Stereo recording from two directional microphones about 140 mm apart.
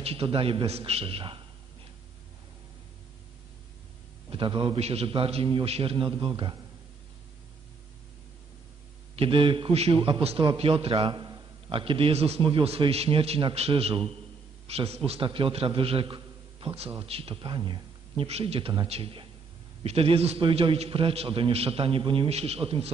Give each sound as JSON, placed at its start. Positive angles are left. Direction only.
{"t": 0.0, "sound": "a man's voice", "side_deg": -40}
{"t": 4.3, "sound": "a man's voice", "side_deg": -35}
{"t": 9.1, "sound": "a man's voice", "side_deg": -40}
{"t": 11.0, "sound": "a sound", "side_deg": -30}
{"t": 11.7, "sound": "a man's voice", "side_deg": -40}